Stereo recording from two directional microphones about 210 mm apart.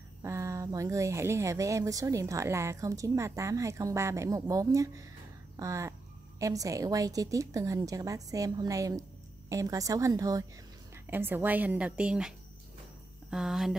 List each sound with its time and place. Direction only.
0.2 s speech: 15° right (ahead or behind)